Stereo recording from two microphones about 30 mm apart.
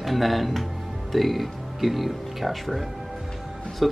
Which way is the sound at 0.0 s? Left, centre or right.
Centre.